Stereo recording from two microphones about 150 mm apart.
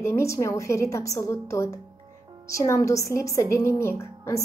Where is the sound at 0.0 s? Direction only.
20° left (ahead or behind).